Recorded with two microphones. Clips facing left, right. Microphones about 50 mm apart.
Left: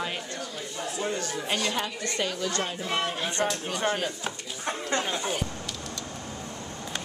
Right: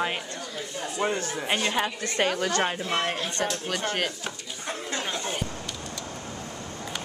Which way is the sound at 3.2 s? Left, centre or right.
Left.